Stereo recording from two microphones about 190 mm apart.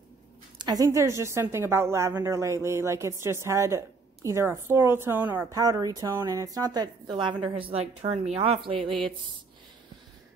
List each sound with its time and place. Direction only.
0.6 s a woman's voice: 20° right (ahead or behind)